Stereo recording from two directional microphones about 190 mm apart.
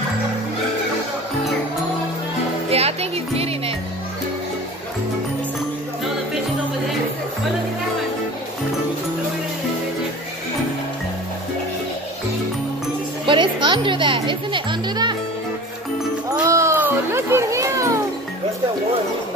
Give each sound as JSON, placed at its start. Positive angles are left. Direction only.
{"t": 2.7, "sound": "music", "side_deg": -30}
{"t": 13.3, "sound": "music", "side_deg": -25}
{"t": 16.4, "sound": "children playing", "side_deg": -15}